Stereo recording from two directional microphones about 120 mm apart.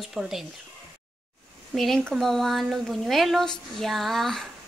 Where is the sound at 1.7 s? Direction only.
5° left (ahead or behind).